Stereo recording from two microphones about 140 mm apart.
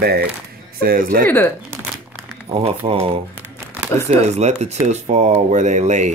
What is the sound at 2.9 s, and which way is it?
Speech, 45° right (ahead or behind).